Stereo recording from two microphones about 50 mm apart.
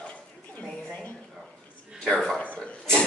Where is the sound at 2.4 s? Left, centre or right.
Left.